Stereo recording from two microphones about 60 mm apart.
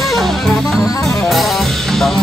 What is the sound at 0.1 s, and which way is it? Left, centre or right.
Music, centre.